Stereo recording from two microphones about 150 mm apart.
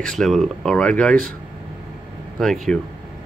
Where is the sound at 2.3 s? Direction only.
Centre (ahead or behind).